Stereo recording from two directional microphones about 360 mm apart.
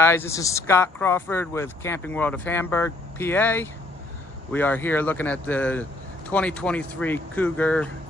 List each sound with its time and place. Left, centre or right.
0.0 s speech: centre